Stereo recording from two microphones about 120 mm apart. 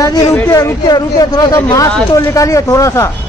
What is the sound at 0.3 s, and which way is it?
Speech, 25° left (ahead or behind).